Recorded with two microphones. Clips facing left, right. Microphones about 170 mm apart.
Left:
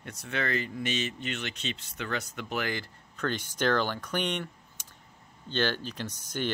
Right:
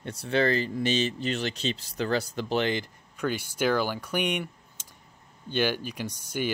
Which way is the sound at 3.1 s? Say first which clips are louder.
Right 2 dB; 10° right (ahead or behind).